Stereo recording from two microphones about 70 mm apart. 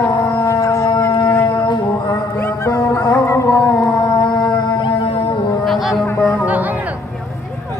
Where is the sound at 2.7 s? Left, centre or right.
Left.